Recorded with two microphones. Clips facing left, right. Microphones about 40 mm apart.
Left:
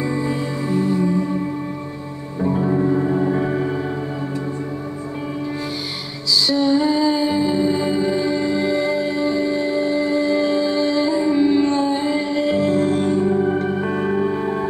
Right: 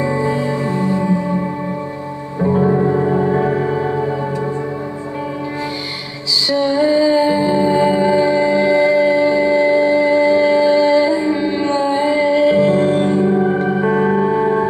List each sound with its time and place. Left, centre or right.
0.0 s music: right
2.4 s music: right
6.5 s music: right; by 14.7 s centre